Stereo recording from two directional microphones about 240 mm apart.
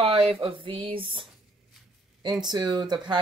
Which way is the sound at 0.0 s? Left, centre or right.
Right.